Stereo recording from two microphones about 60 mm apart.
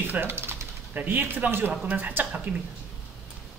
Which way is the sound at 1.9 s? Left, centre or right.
Right.